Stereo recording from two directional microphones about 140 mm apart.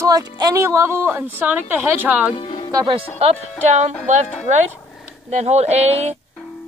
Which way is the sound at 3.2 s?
50° right (ahead or behind).